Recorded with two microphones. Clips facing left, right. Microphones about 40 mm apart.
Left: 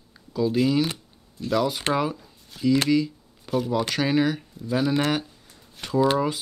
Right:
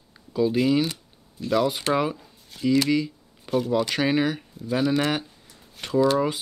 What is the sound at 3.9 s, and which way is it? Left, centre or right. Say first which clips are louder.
Speech: even; centre.